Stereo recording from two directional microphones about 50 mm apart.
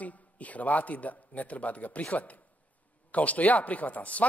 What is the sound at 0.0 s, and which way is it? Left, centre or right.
A man's voice, left.